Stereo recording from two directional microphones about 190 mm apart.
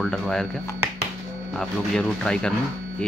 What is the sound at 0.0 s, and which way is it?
Speech, centre (ahead or behind).